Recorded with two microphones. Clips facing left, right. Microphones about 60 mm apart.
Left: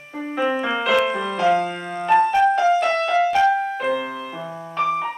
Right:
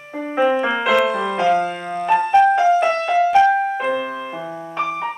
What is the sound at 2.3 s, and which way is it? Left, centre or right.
Music, centre.